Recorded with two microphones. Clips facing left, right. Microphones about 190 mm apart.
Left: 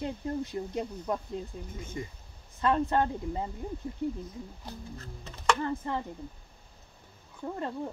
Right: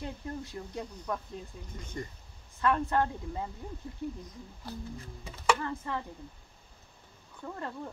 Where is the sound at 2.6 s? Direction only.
20° left (ahead or behind).